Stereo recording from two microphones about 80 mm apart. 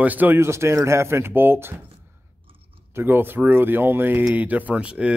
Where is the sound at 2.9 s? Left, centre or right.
Right.